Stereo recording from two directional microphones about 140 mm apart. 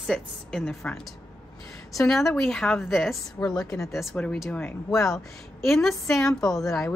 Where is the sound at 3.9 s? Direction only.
Centre (ahead or behind).